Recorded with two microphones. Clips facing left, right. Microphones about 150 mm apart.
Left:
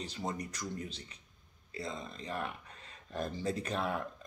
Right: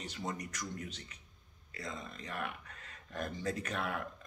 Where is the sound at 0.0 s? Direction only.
35° left (ahead or behind).